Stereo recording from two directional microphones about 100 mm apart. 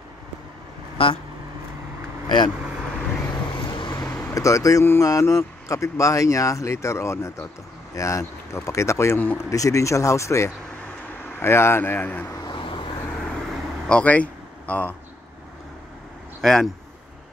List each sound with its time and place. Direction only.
0.9 s speech: 65° left (ahead or behind)
2.2 s speech: 50° left (ahead or behind)
3.5 s vehicle: 50° left (ahead or behind)
4.3 s speech: 30° left (ahead or behind)
9.4 s speech: 30° left (ahead or behind); by 12.4 s 15° left (ahead or behind)
12.4 s vehicle: 55° left (ahead or behind)
13.8 s speech: 15° left (ahead or behind)
16.3 s speech: 5° left (ahead or behind)